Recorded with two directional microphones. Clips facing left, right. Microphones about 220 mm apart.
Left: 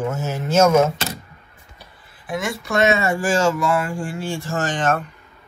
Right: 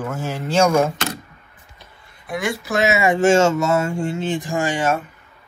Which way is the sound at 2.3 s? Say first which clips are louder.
Right 1 dB; centre (ahead or behind).